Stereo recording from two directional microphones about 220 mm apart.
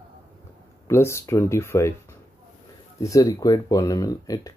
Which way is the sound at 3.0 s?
15° left (ahead or behind).